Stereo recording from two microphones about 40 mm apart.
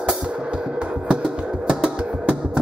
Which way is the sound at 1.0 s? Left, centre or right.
Centre.